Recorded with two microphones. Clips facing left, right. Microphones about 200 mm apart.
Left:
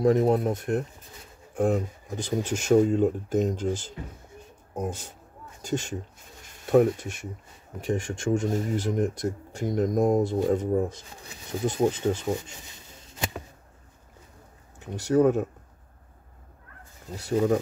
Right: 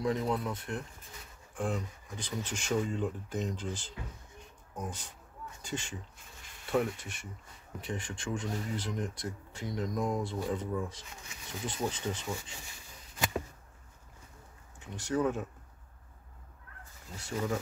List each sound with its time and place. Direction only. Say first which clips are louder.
0.0 s speech: left 10 dB; 45° left (ahead or behind)
12.6 s a sound: left 4 dB; 25° left (ahead or behind)
14.8 s speech: left 10 dB; 40° left (ahead or behind)
17.1 s speech: left 11 dB; 40° left (ahead or behind)